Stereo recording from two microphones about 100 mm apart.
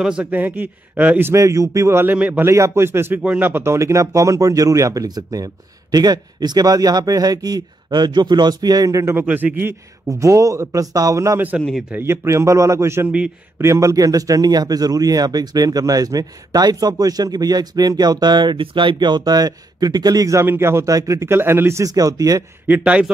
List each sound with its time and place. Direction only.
0.0 s a man's voice: 10° right (ahead or behind)
1.3 s a man's voice: 30° right (ahead or behind)
2.5 s a man's voice: 30° right (ahead or behind)
9.1 s a man's voice: 15° right (ahead or behind); by 20.4 s 35° right (ahead or behind)
20.4 s a man's voice: 25° right (ahead or behind)
22.7 s a man's voice: 15° right (ahead or behind)